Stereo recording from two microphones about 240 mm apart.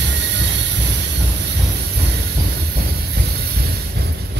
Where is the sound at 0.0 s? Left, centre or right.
Right.